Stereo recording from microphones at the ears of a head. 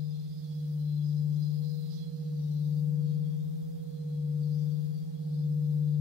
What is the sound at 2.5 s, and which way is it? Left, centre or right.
Gong, left.